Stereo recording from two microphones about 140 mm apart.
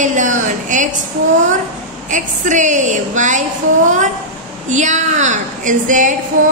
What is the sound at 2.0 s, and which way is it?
A woman's voice, 65° right (ahead or behind).